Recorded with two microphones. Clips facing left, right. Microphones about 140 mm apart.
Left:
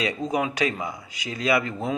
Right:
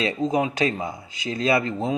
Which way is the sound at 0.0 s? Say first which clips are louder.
Right 3 dB; 25° right (ahead or behind).